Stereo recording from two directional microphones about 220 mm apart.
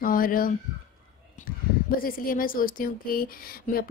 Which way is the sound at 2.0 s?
40° left (ahead or behind).